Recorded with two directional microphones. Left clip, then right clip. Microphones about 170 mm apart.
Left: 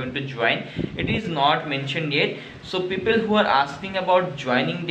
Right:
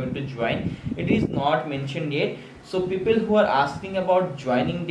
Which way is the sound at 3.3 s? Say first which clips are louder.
Even; 5° right (ahead or behind).